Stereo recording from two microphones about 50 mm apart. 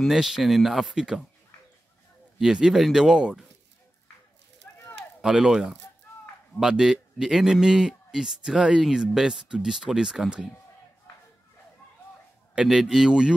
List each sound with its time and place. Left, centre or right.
0.1 s speech: centre
2.3 s speech: centre
4.6 s a sound: left
5.2 s speech: centre
12.6 s speech: centre